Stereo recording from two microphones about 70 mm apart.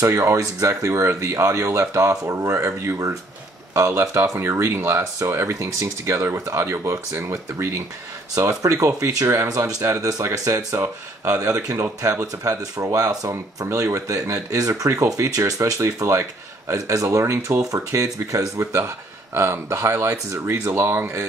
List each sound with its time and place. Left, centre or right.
0.0 s speech: right
9.9 s speech: right
13.7 s speech: right